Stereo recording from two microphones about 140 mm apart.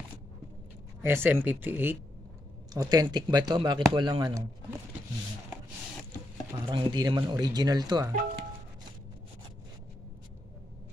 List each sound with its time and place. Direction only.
1.0 s speech: 15° right (ahead or behind)
2.7 s speech: 25° right (ahead or behind)
6.6 s speech: 30° right (ahead or behind)